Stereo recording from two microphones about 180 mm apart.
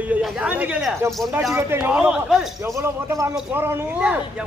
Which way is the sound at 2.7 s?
15° right (ahead or behind).